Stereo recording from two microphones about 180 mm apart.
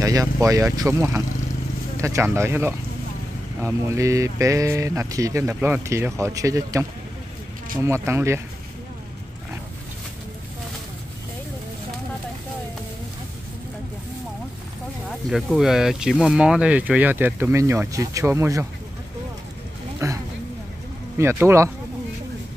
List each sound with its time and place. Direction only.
0.0 s speech: 20° right (ahead or behind)
15.0 s speech: centre (ahead or behind)
20.0 s a sound: 15° right (ahead or behind)
21.2 s speech: 15° right (ahead or behind)